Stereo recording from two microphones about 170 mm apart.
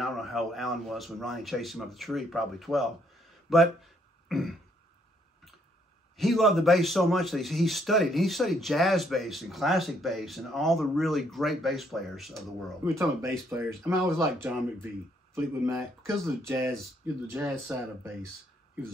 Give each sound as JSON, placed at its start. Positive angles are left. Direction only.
{"t": 0.0, "sound": "a man's voice", "side_deg": 0}
{"t": 3.4, "sound": "a sound", "side_deg": 0}
{"t": 6.1, "sound": "a man's voice", "side_deg": 0}
{"t": 12.8, "sound": "speech", "side_deg": -15}
{"t": 16.4, "sound": "speech", "side_deg": -15}